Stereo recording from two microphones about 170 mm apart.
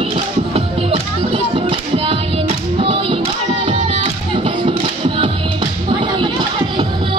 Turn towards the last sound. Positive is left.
turn(degrees=-25)  # may be behind; listen again after turning